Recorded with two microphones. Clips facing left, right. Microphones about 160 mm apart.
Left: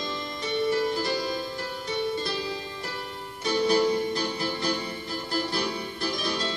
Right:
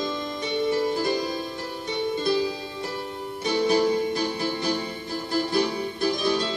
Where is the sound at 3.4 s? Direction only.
20° right (ahead or behind).